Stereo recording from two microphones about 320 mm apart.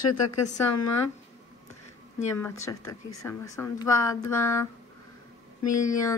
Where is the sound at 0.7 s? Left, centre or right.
Left.